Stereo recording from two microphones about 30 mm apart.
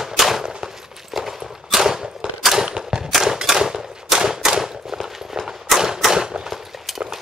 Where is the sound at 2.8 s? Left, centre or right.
Centre.